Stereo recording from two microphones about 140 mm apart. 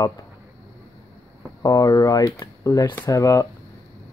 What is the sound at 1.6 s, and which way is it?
Speech, 25° left (ahead or behind).